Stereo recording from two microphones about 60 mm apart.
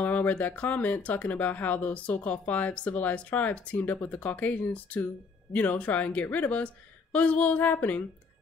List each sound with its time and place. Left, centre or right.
0.0 s speech: left